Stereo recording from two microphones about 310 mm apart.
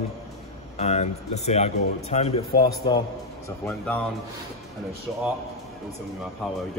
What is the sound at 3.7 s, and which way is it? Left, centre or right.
Speech, centre.